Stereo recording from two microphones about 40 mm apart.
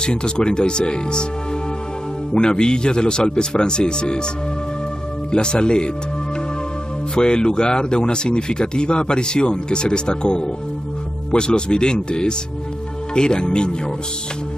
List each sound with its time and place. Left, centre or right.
0.0 s speech: left
2.3 s speech: left
5.3 s speech: left
7.2 s speech: left